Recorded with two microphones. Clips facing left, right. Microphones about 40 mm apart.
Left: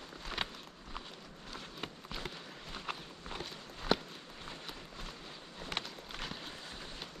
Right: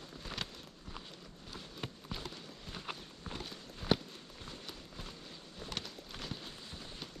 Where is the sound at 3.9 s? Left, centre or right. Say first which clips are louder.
Left 1 dB; centre.